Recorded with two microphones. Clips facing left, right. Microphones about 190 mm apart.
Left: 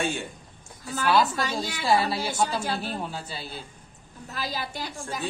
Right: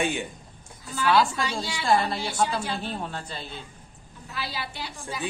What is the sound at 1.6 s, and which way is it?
Speech, 45° left (ahead or behind).